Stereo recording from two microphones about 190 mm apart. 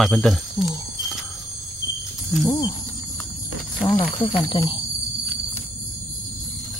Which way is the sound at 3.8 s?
10° left (ahead or behind).